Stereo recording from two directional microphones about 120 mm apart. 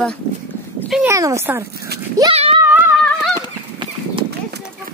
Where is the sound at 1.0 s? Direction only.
25° right (ahead or behind).